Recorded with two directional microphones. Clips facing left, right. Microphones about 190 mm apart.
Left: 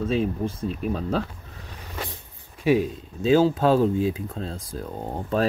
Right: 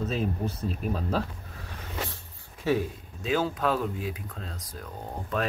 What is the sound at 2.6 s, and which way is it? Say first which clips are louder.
Speech: left 6 dB; 15° left (ahead or behind).